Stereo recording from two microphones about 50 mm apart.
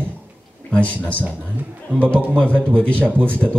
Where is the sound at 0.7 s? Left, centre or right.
Left.